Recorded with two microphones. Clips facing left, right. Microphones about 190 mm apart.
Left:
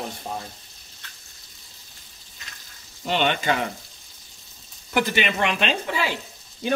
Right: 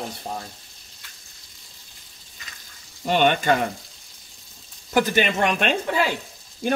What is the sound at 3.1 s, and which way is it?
Speech, 50° right (ahead or behind).